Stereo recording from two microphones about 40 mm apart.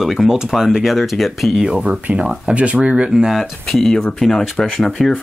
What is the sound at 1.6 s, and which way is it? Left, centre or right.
Speech, right.